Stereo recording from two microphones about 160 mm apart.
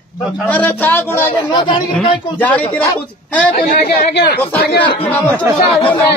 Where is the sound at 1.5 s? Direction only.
30° left (ahead or behind).